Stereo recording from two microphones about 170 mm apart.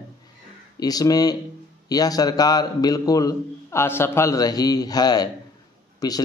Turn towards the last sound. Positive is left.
turn(degrees=20)  # may be behind; listen again after turning